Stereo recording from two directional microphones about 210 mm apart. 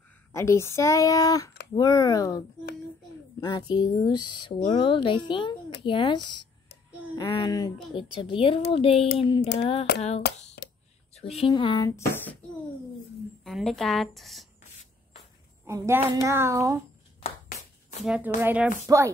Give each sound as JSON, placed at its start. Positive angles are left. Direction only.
{"t": 0.3, "sound": "speech", "side_deg": 15}
{"t": 10.6, "sound": "a sound", "side_deg": 50}
{"t": 11.1, "sound": "speech", "side_deg": 30}
{"t": 13.4, "sound": "a woman's voice", "side_deg": 0}
{"t": 15.6, "sound": "a woman's voice", "side_deg": -15}
{"t": 18.0, "sound": "a woman's voice", "side_deg": -5}